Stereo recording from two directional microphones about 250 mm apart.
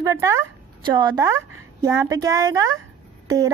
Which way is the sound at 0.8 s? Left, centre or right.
Centre.